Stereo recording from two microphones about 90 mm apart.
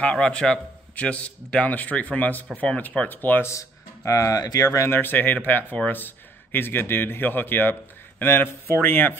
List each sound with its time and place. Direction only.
0.0 s a man's voice: 10° left (ahead or behind); by 4.6 s 45° left (ahead or behind)
4.6 s speech: 30° left (ahead or behind)